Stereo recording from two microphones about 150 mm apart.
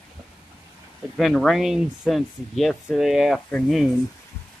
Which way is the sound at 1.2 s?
Centre (ahead or behind).